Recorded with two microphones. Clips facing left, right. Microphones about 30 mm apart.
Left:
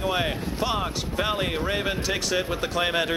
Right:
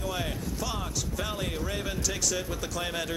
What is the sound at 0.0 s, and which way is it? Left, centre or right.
Speech, left.